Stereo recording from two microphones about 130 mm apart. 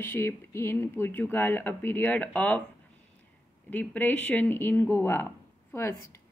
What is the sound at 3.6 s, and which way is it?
A woman's voice, 15° left (ahead or behind).